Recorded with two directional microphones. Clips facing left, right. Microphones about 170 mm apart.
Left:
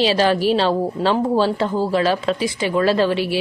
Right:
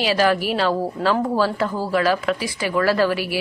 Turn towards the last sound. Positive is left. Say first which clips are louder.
# left 2 dB
turn(degrees=25)  # may be behind; listen again after turning